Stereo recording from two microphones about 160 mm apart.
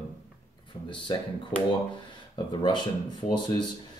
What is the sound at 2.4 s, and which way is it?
Speech, 30° left (ahead or behind).